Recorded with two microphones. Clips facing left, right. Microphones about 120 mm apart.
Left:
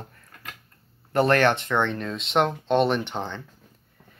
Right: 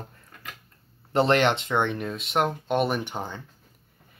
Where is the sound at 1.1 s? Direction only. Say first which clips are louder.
Left 1 dB; 20° right (ahead or behind).